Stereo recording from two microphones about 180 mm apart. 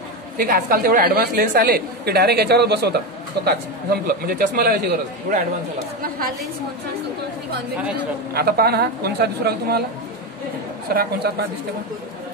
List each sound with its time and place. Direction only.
0.4 s a woman's voice: 55° right (ahead or behind)
8.4 s a woman's voice: 60° right (ahead or behind)
10.9 s a woman's voice: 60° right (ahead or behind)